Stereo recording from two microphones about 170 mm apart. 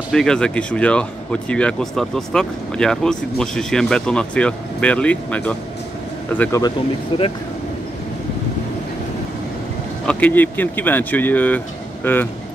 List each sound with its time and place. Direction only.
0.1 s speech: 5° left (ahead or behind)
7.1 s speech: 35° left (ahead or behind)
10.0 s speech: 10° left (ahead or behind)